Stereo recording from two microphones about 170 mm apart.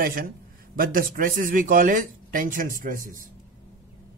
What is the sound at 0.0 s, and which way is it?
A man's voice, 55° right (ahead or behind).